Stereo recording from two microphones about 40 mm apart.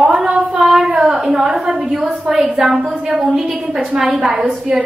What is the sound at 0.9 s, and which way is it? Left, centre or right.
A woman's voice, centre.